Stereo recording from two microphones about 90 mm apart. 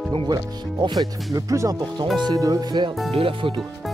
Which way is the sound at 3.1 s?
90° right.